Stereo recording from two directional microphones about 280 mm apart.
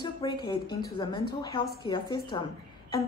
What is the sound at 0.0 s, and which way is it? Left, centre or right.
A woman's voice, centre.